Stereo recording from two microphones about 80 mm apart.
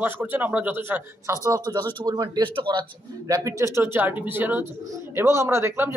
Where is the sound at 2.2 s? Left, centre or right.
Right.